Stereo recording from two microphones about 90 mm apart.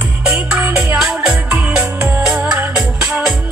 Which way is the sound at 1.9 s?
25° right (ahead or behind).